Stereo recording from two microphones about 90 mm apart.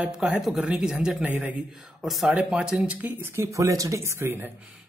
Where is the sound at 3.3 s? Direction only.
35° right (ahead or behind).